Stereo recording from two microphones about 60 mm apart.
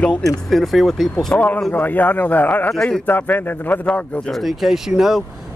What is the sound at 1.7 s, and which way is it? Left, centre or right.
Speech, left.